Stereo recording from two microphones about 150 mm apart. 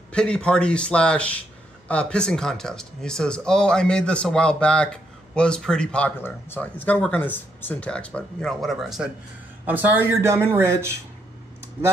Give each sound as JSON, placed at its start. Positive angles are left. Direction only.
{"t": 0.1, "sound": "a man's voice", "side_deg": 5}